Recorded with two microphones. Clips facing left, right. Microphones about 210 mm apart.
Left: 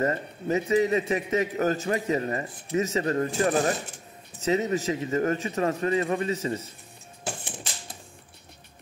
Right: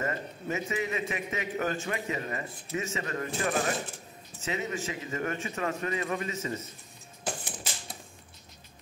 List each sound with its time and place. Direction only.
0.0 s a man's voice: 35° left (ahead or behind)